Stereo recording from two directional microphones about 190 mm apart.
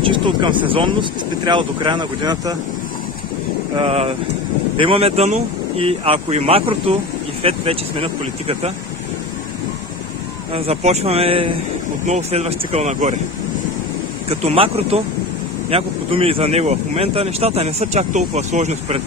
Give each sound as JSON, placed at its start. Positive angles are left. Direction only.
{"t": 0.0, "sound": "speech", "side_deg": -25}
{"t": 3.7, "sound": "speech", "side_deg": -30}
{"t": 10.5, "sound": "speech", "side_deg": -35}
{"t": 14.4, "sound": "speech", "side_deg": -30}